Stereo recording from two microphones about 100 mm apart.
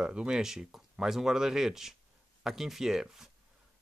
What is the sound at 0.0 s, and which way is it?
Speech, 10° right (ahead or behind).